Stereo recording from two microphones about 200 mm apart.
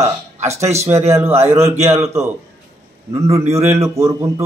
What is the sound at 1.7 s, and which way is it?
Speech, 30° right (ahead or behind).